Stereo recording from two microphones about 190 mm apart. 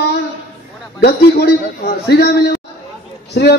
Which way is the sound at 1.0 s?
55° left (ahead or behind).